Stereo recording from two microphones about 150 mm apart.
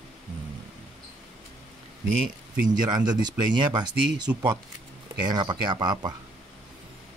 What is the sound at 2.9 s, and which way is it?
Speech, 30° right (ahead or behind).